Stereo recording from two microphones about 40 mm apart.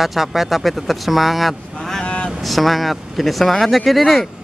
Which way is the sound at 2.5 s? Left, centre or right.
Centre.